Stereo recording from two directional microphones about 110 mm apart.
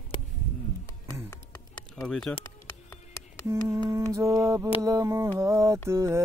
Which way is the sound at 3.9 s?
25° right (ahead or behind).